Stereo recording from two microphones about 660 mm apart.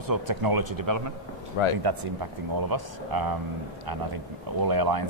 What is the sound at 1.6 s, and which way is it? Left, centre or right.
Speech, left.